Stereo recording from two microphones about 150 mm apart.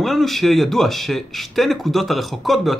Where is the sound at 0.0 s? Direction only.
Centre (ahead or behind).